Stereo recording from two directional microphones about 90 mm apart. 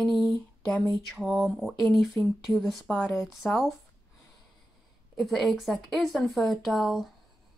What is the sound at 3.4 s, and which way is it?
Speech, 20° left (ahead or behind).